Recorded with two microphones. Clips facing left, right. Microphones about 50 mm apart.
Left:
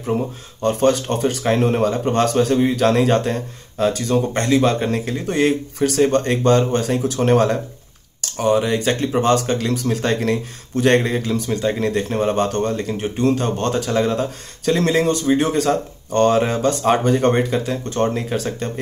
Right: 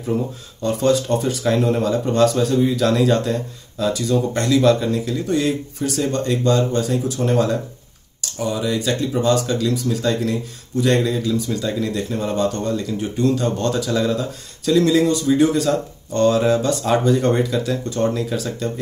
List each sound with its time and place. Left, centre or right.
0.6 s speech: left
4.8 s speech: left
5.8 s speech: left